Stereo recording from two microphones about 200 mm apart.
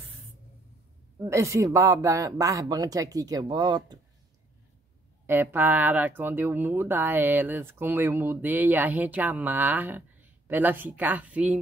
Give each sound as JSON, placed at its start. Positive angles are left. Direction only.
{"t": 1.2, "sound": "speech", "side_deg": -15}
{"t": 5.2, "sound": "speech", "side_deg": -10}